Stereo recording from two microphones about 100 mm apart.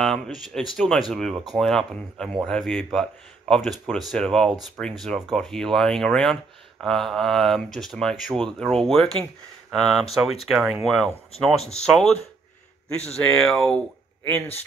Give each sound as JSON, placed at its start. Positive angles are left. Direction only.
{"t": 0.0, "sound": "speech", "side_deg": 0}
{"t": 10.4, "sound": "speech", "side_deg": 0}
{"t": 13.2, "sound": "speech", "side_deg": 5}
{"t": 14.2, "sound": "speech", "side_deg": 20}